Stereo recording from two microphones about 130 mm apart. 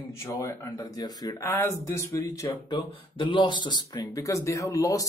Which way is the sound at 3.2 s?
40° left (ahead or behind).